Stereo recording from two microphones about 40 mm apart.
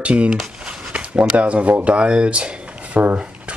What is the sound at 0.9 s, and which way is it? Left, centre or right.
Speech, right.